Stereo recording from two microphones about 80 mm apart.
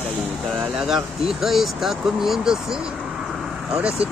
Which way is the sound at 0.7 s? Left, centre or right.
Centre.